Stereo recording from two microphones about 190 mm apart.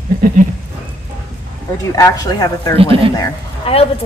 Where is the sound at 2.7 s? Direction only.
30° right (ahead or behind).